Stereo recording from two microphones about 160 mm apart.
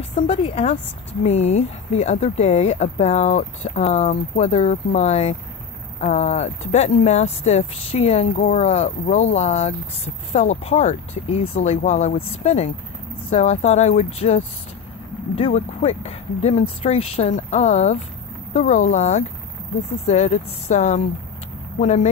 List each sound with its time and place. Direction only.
0.1 s speech: 35° left (ahead or behind)